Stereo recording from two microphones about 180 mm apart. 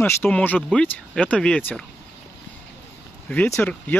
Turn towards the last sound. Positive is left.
turn(degrees=10)  # may be behind; listen again after turning